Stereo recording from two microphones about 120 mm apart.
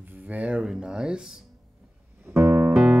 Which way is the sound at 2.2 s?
20° right (ahead or behind).